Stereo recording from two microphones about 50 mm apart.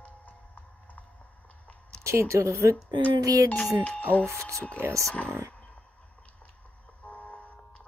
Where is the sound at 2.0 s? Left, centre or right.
Right.